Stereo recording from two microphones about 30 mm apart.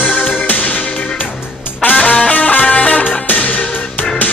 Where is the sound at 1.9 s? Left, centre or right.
Left.